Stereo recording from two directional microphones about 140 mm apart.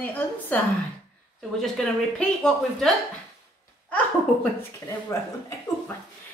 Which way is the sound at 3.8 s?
10° left (ahead or behind).